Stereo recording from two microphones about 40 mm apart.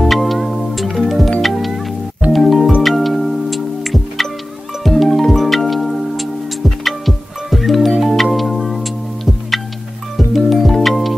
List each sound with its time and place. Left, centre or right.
0.0 s music: centre